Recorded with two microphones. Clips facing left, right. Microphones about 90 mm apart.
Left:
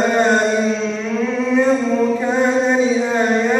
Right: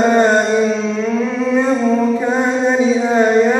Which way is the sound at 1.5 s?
5° right (ahead or behind).